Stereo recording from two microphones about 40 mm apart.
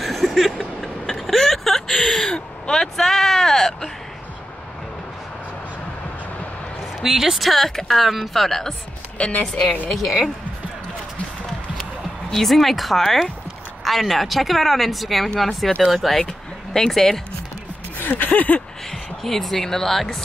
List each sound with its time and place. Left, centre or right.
0.0 s vehicle: centre
2.3 s a sound: centre
7.0 s speech: centre
7.4 s speech: centre
12.3 s speech: centre
15.8 s speech: centre
16.2 s speech: centre
17.9 s a sound: left
18.3 s a sound: left
18.9 s speech: centre